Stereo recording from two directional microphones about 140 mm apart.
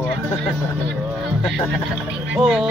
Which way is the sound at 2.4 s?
Centre (ahead or behind).